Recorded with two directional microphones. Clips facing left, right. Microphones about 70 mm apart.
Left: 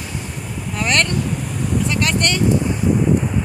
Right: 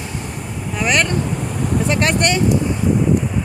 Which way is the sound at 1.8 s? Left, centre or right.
Right.